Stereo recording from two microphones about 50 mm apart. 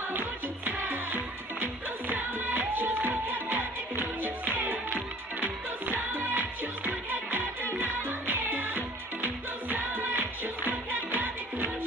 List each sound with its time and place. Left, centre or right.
0.7 s music: right